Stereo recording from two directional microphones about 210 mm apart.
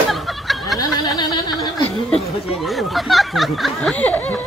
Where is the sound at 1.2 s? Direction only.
20° left (ahead or behind).